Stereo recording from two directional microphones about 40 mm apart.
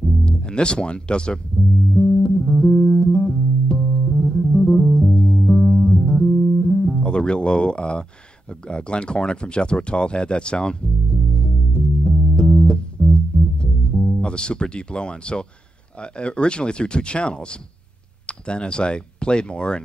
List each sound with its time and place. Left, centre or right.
0.2 s speech: left
2.0 s music: left
7.0 s speech: left
8.6 s a sound: left
12.5 s music: left
13.9 s speech: centre